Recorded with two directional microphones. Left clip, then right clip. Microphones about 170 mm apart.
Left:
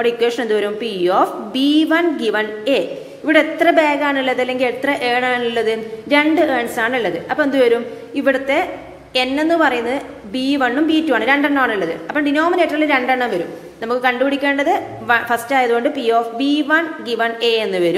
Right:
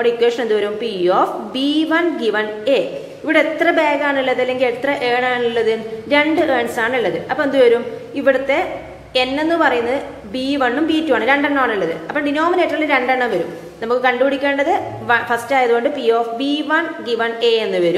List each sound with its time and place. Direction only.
0.0 s a woman's voice: 20° left (ahead or behind)